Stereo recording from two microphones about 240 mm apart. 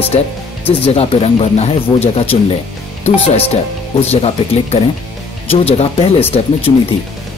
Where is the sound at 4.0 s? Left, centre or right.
Left.